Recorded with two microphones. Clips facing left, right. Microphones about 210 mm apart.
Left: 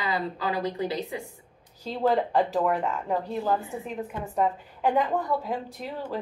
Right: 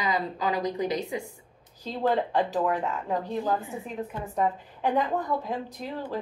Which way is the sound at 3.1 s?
15° right (ahead or behind).